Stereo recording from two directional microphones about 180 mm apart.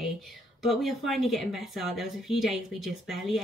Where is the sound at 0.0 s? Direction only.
Centre (ahead or behind).